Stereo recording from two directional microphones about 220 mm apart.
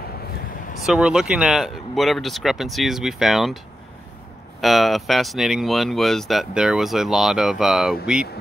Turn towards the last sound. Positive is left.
turn(degrees=0)  # may be behind; listen again after turning